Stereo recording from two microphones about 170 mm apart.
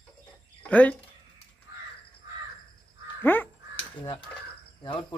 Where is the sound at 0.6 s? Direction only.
10° left (ahead or behind).